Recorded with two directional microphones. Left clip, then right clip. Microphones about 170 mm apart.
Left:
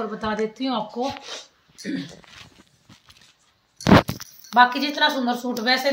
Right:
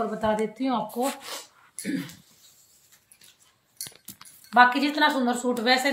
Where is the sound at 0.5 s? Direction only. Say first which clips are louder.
Left 1 dB; 15° left (ahead or behind).